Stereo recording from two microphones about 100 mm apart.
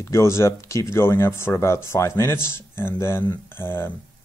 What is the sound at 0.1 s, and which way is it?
Speech, 25° left (ahead or behind).